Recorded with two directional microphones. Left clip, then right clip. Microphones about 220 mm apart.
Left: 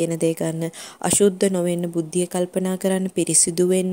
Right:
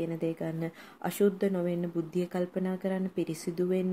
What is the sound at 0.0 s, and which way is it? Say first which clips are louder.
A woman's voice: left 11 dB; 45° left (ahead or behind).